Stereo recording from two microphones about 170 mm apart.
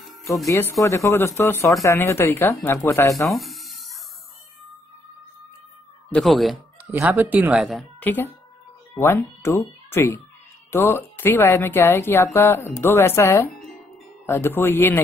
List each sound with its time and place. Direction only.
0.5 s speech: 15° left (ahead or behind)
3.3 s a sound: centre (ahead or behind)
6.1 s speech: centre (ahead or behind)
6.9 s speech: 10° right (ahead or behind)
8.0 s speech: 10° left (ahead or behind)